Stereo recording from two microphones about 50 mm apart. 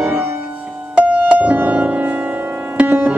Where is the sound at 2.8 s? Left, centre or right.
Right.